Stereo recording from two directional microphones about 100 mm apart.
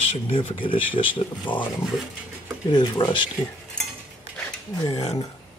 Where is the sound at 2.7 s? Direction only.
50° left (ahead or behind).